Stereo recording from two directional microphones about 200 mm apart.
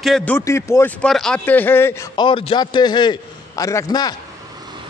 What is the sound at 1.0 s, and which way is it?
A man's voice, centre (ahead or behind).